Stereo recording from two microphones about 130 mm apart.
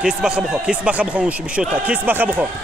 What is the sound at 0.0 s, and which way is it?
Speech, 5° right (ahead or behind).